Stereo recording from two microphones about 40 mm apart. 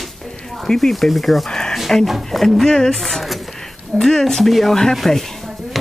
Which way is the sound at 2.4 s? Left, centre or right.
Centre.